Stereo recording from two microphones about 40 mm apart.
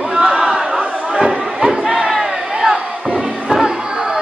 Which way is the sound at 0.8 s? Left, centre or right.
Right.